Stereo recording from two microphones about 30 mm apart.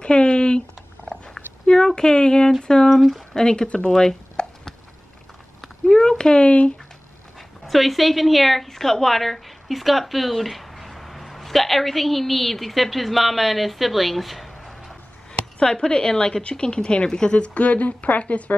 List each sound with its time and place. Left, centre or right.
0.0 s dog: left
1.3 s a sound: centre
2.6 s a woman's voice: left
3.6 s speech: left
3.9 s speech: centre
5.9 s a sound: centre
6.1 s speech: left
7.6 s a woman's voice: centre
15.6 s a woman's voice: left
17.6 s a woman's voice: left